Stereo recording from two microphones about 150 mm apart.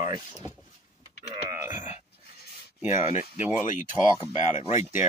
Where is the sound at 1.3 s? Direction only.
20° right (ahead or behind).